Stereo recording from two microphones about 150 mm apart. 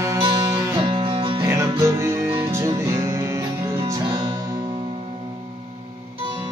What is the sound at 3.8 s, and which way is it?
Music, 30° right (ahead or behind).